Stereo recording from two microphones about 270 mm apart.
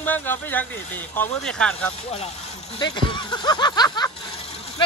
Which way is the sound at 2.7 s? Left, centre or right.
Centre.